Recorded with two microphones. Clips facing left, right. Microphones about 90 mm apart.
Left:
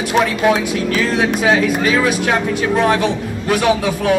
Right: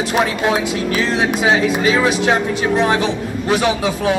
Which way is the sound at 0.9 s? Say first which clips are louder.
Left 1 dB; 25° right (ahead or behind).